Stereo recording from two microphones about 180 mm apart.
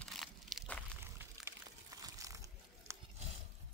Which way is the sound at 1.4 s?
20° right (ahead or behind).